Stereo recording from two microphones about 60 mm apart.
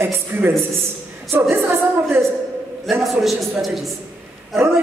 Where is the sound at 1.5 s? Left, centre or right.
Right.